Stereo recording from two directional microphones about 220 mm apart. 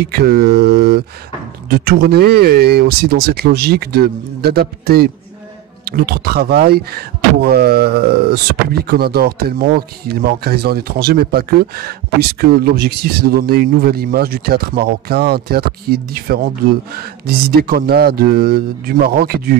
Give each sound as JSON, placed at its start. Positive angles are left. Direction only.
{"t": 0.0, "sound": "speech", "side_deg": -45}